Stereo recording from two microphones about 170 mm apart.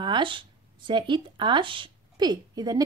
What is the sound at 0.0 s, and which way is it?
Speech, 30° right (ahead or behind).